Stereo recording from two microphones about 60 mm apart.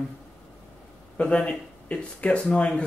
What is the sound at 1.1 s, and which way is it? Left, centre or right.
Speech, centre.